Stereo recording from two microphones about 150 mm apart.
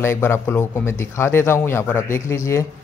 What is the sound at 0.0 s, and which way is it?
Speech, 15° left (ahead or behind).